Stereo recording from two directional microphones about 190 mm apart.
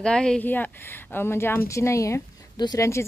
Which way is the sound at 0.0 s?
5° left (ahead or behind).